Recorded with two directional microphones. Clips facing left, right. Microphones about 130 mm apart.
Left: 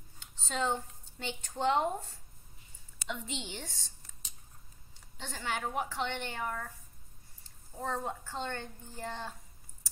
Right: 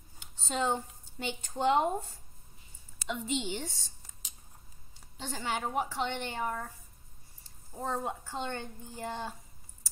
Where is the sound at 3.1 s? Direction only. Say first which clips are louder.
Right 6 dB; 5° right (ahead or behind).